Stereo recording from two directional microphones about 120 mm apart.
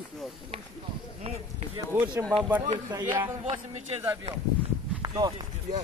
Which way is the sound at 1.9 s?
20° right (ahead or behind).